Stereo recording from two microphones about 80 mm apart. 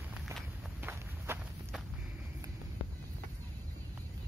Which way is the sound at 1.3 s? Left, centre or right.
Right.